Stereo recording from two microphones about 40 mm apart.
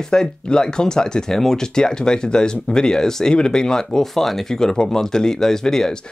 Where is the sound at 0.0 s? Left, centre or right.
Centre.